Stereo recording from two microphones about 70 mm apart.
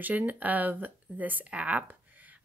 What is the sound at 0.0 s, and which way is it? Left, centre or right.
Speech, right.